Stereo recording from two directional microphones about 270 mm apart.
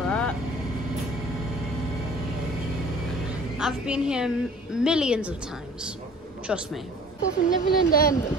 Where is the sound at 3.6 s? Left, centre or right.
Centre.